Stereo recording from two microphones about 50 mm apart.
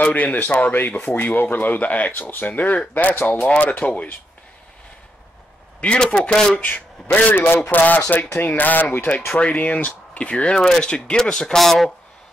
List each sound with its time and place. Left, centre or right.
0.0 s speech: left
3.4 s speech: left
5.8 s speech: left
7.3 s speech: left; by 11.9 s centre